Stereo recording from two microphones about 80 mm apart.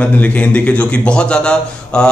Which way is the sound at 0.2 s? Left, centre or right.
Centre.